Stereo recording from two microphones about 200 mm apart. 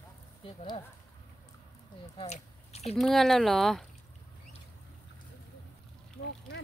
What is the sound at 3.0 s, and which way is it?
Speech, centre (ahead or behind).